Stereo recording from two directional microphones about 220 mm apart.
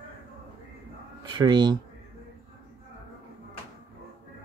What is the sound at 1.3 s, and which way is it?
Speech, 20° right (ahead or behind).